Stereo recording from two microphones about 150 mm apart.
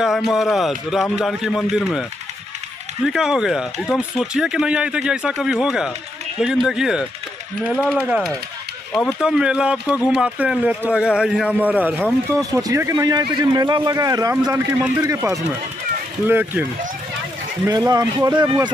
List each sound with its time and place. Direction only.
0.0 s speech: centre (ahead or behind)
12.4 s speech: 25° right (ahead or behind)
16.3 s speech: 10° right (ahead or behind)
17.6 s speech: 25° right (ahead or behind)